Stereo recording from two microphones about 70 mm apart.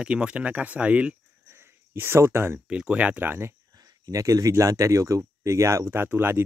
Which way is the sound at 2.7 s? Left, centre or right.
Centre.